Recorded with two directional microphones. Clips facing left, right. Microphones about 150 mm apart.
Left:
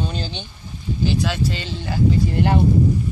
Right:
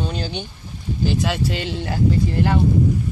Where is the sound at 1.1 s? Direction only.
70° right (ahead or behind).